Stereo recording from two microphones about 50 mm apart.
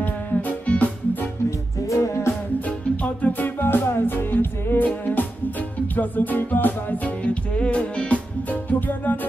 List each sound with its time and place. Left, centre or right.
0.0 s music: left
1.9 s music: left
2.6 s music: left
8.5 s music: left